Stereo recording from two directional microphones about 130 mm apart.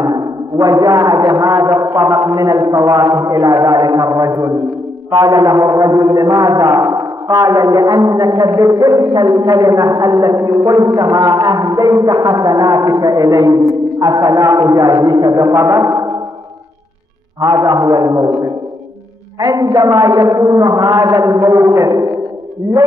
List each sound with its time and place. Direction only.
0.0 s a man's voice: 30° right (ahead or behind)
17.4 s a man's voice: 30° right (ahead or behind)
19.4 s a man's voice: 30° right (ahead or behind)